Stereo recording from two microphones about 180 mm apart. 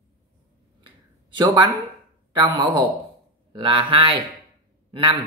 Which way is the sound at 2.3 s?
25° right (ahead or behind).